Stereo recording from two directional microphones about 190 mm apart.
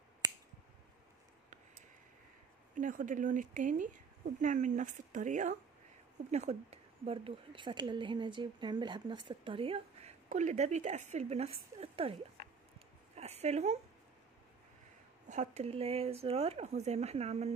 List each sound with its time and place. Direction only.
2.7 s a woman's voice: 45° right (ahead or behind)
15.2 s speech: 40° right (ahead or behind)